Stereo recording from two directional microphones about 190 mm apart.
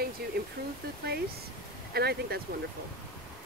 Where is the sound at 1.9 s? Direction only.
55° right (ahead or behind).